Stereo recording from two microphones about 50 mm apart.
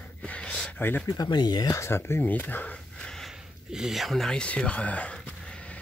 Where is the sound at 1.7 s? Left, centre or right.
Left.